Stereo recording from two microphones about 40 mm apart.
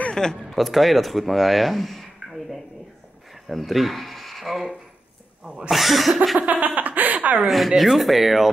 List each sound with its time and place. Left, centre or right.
0.1 s a sound: centre
0.4 s speech: centre
3.4 s speech: centre
6.4 s chuckle: right
7.3 s speech: centre